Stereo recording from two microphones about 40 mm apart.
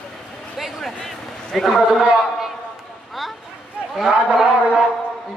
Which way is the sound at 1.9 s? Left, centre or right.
Centre.